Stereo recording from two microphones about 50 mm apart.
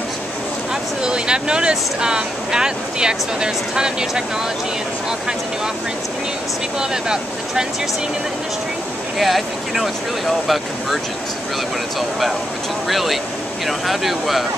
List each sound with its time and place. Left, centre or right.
1.0 s speech: centre
6.8 s speech: centre
9.2 s speech: centre
12.8 s speech: centre